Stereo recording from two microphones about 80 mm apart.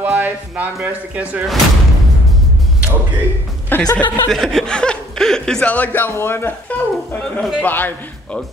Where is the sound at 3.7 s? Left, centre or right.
Left.